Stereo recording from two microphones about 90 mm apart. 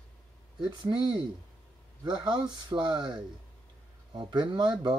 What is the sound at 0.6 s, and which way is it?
Speech, 60° right (ahead or behind).